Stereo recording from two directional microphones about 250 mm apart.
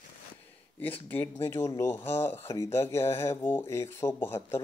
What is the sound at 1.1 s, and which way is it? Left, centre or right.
Speech, centre.